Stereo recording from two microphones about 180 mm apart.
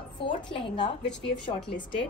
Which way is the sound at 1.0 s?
75° left (ahead or behind).